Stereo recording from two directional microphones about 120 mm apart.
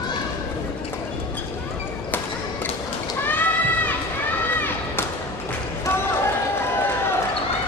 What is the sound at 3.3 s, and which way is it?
Goat, 15° left (ahead or behind).